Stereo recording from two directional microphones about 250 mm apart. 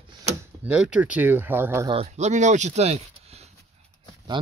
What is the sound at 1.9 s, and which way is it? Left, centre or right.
Speech, right.